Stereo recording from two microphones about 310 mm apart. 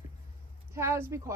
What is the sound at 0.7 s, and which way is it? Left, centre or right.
Speech, centre.